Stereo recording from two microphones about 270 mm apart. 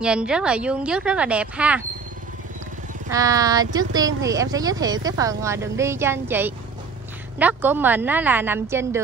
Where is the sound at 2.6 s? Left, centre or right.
Right.